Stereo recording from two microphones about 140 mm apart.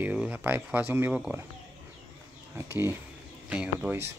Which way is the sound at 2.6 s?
20° right (ahead or behind).